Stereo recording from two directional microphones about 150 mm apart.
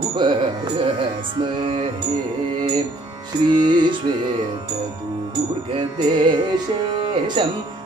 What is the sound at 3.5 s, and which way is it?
Music, 30° right (ahead or behind).